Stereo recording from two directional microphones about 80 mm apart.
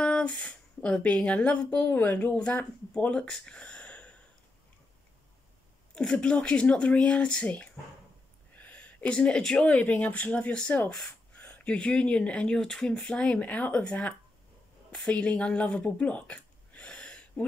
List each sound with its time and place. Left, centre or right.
0.0 s speech: centre
5.9 s speech: centre
14.9 s a sound: centre